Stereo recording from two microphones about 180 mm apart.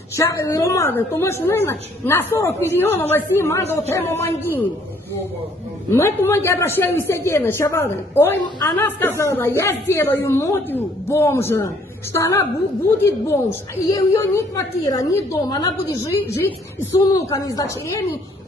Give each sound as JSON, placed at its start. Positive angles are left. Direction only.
{"t": 0.1, "sound": "a man's voice", "side_deg": 15}
{"t": 5.9, "sound": "a man's voice", "side_deg": 15}